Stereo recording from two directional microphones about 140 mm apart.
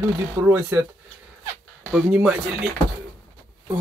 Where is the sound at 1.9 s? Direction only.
10° right (ahead or behind).